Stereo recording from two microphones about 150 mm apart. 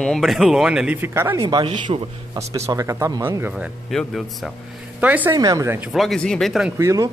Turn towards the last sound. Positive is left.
turn(degrees=-20)  # may be behind; listen again after turning